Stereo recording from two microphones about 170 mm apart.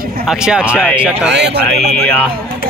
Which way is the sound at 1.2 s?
90° right.